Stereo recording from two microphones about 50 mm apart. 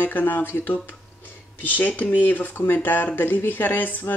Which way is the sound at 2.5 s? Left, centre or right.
Left.